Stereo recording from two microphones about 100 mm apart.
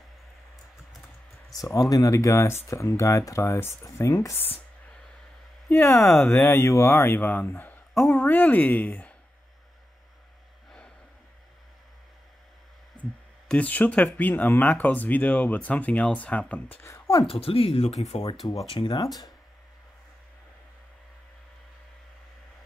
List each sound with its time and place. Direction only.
1.5 s speech: 35° left (ahead or behind)
5.7 s speech: 20° left (ahead or behind)
7.9 s a sound: 30° left (ahead or behind)
8.2 s speech: 20° left (ahead or behind)
13.5 s speech: 15° left (ahead or behind)
16.8 s a sound: 25° left (ahead or behind)
17.3 s speech: 70° left (ahead or behind)
18.7 s speech: 60° left (ahead or behind)